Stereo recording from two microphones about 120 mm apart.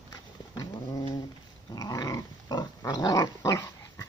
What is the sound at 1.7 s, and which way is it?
Dog, 30° left (ahead or behind).